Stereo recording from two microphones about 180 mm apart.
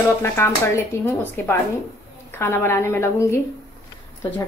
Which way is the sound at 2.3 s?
15° left (ahead or behind).